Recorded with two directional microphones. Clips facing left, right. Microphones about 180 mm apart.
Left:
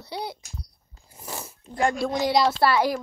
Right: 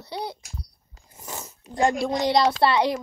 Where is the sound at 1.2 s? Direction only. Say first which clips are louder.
Left 1 dB; 10° left (ahead or behind).